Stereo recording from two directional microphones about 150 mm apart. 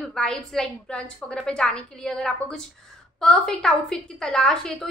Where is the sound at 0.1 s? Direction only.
5° left (ahead or behind).